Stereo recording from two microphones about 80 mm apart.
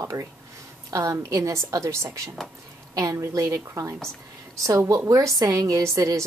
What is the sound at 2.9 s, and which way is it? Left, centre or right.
A woman's voice, right.